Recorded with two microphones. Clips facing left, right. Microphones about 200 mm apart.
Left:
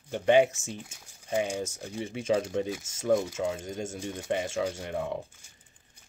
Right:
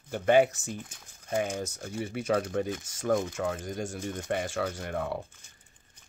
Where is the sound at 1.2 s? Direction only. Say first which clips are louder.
Left 1 dB; 10° left (ahead or behind).